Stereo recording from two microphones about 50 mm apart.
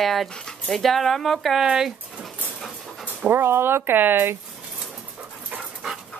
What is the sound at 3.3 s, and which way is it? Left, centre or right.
Speech, right.